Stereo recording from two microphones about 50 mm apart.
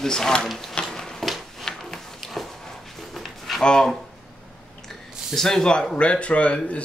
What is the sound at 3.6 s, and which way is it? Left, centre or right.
Speech, centre.